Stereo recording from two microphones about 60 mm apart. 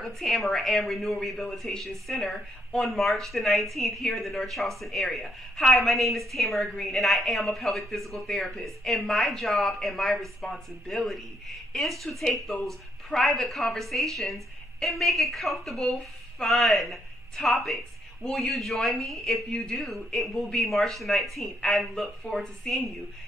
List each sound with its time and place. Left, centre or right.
0.0 s a woman's voice: centre